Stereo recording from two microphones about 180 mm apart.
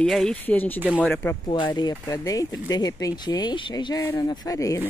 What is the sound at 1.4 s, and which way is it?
Speech, 25° left (ahead or behind).